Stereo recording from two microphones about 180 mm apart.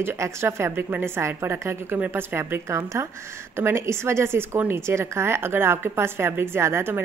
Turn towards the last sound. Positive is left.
turn(degrees=-15)  # may be behind; listen again after turning